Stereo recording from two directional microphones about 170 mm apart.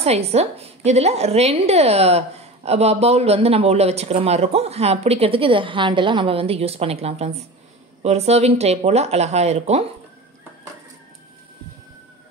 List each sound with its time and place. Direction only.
0.0 s a woman's voice: 40° right (ahead or behind)